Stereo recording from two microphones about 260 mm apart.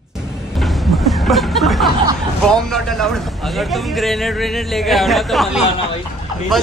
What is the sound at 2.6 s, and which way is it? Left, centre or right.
A man's voice, centre.